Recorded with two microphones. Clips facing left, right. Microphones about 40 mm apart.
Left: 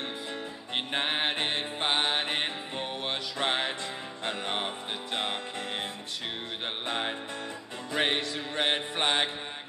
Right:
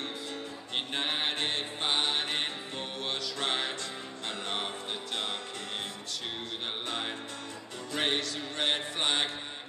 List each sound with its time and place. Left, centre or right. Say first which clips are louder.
0.7 s music: left 3 dB; left
6.9 s music: left 4 dB; left